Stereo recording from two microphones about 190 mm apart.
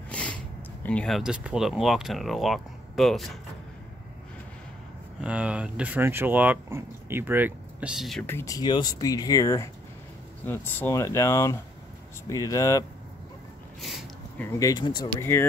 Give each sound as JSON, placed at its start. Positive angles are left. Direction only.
{"t": 0.1, "sound": "sniff", "side_deg": 5}
{"t": 0.8, "sound": "speech", "side_deg": 5}
{"t": 5.2, "sound": "speech", "side_deg": -5}
{"t": 8.3, "sound": "speech", "side_deg": 15}
{"t": 13.7, "sound": "a sound", "side_deg": 0}
{"t": 14.4, "sound": "speech", "side_deg": 20}